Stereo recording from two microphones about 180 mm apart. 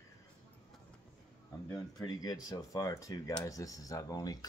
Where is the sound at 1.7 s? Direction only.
20° left (ahead or behind).